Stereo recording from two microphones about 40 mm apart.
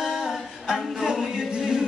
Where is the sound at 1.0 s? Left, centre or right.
Centre.